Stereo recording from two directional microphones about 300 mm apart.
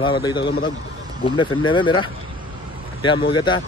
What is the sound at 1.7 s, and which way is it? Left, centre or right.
Speech, centre.